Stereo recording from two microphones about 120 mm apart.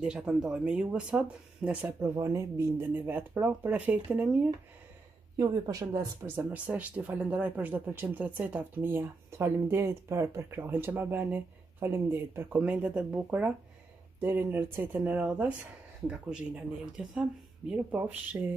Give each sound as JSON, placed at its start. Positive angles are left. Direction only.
{"t": 0.0, "sound": "speech", "side_deg": -5}
{"t": 2.1, "sound": "speech", "side_deg": -25}
{"t": 2.8, "sound": "speech", "side_deg": -15}
{"t": 5.4, "sound": "speech", "side_deg": -30}
{"t": 6.3, "sound": "speech", "side_deg": -10}